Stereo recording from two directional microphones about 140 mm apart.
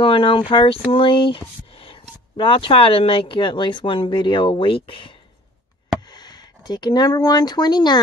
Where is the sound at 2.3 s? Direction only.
40° left (ahead or behind).